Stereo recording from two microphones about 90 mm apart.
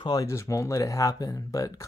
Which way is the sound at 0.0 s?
45° left (ahead or behind).